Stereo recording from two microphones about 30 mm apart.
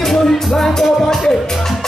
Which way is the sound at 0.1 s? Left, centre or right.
Centre.